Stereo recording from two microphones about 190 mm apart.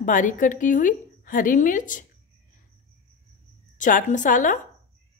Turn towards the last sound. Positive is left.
turn(degrees=40)  # may be behind; listen again after turning